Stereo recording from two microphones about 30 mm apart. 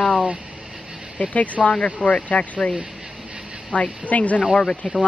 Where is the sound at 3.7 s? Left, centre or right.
Left.